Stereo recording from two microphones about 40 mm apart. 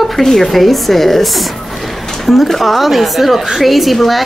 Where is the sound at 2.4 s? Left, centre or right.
Centre.